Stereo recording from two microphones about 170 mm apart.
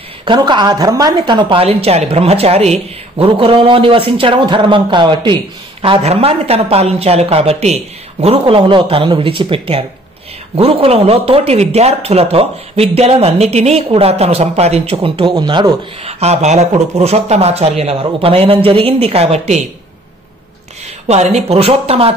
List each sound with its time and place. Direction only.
0.2 s speech: 25° right (ahead or behind)
21.1 s speech: 40° right (ahead or behind)